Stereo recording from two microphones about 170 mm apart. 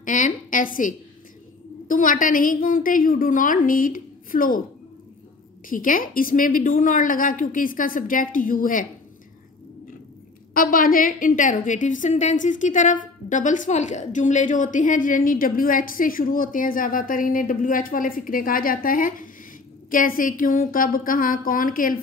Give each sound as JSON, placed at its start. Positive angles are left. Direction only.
{"t": 0.0, "sound": "a sound", "side_deg": 50}
{"t": 1.9, "sound": "a woman's voice", "side_deg": 50}
{"t": 5.7, "sound": "a woman's voice", "side_deg": 55}
{"t": 10.5, "sound": "a woman's voice", "side_deg": 55}